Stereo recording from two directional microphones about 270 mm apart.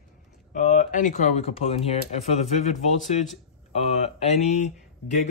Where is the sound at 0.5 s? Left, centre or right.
Left.